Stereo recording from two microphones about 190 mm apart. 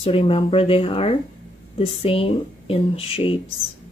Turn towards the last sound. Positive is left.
turn(degrees=30)  # may be behind; listen again after turning